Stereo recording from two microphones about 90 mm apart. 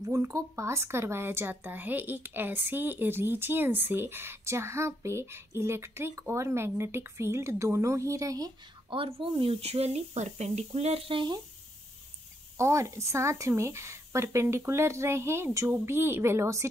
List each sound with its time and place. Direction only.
0.0 s a woman's voice: 35° right (ahead or behind)
8.9 s speech: 75° right (ahead or behind)
10.7 s speech: 85° right
12.5 s a woman's voice: 35° right (ahead or behind)